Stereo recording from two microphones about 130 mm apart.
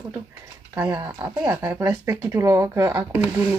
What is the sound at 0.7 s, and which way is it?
Speech, 20° right (ahead or behind).